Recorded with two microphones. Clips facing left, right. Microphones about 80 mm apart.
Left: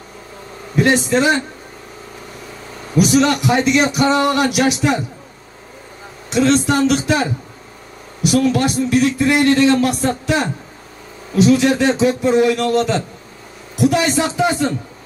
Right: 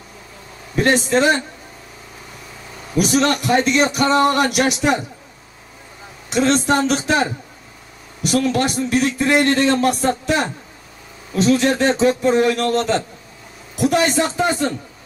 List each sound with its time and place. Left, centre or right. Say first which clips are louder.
0.7 s a man's voice: left 1 dB; right
3.0 s a man's voice: left 3 dB; right
6.3 s a man's voice: left 2 dB; right
8.5 s a man's voice: left 2 dB; right